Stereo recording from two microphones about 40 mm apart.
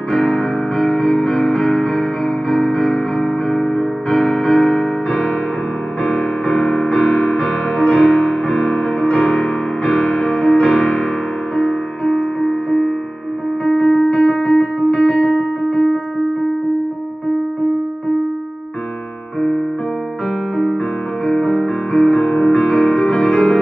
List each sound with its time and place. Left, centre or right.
0.1 s music: centre
6.0 s music: left
7.0 s music: left
21.3 s music: centre